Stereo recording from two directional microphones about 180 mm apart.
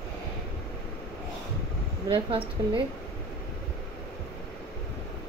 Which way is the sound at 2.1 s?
30° right (ahead or behind).